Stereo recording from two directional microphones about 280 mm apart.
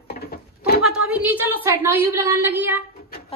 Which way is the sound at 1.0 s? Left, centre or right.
Centre.